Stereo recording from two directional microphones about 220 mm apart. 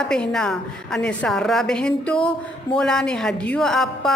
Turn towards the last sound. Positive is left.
turn(degrees=0)  # may be behind; listen again after turning